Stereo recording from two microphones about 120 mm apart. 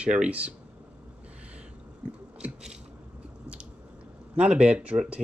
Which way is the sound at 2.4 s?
5° right (ahead or behind).